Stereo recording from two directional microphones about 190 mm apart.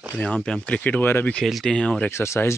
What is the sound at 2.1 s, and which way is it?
Speech, 15° left (ahead or behind).